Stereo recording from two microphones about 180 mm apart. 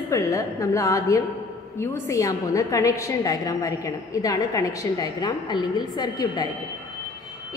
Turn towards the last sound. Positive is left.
turn(degrees=20)  # may be behind; listen again after turning